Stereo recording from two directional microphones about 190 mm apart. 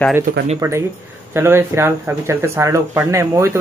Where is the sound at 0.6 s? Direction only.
15° right (ahead or behind).